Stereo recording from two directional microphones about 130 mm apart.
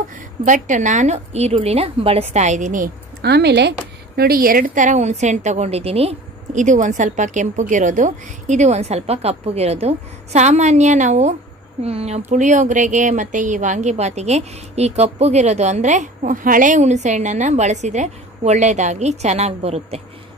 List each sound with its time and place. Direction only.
0.5 s a woman's voice: 70° right (ahead or behind)
4.4 s a woman's voice: 90° right; by 11.3 s 65° right (ahead or behind)
11.8 s speech: 55° right (ahead or behind)
12.3 s a woman's voice: 70° right (ahead or behind); by 20.0 s 55° right (ahead or behind)